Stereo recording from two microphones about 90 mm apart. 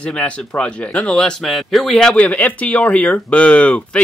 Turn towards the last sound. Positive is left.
turn(degrees=15)  # may be behind; listen again after turning